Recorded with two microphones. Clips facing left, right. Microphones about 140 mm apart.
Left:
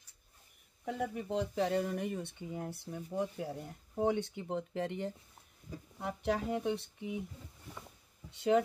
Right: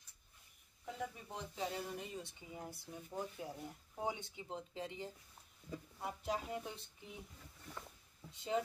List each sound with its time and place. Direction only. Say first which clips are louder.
0.8 s speech: left 9 dB; 70° left (ahead or behind)
8.3 s speech: left 9 dB; 70° left (ahead or behind)